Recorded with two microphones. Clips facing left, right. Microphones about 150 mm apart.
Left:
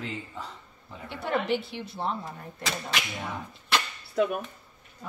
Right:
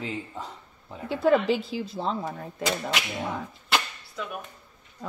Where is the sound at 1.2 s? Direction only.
90° right.